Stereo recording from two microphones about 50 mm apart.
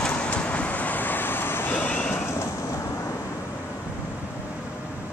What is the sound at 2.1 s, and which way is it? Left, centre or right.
Vehicle, left.